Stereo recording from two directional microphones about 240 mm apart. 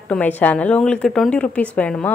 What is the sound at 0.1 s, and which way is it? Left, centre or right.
A woman's voice, centre.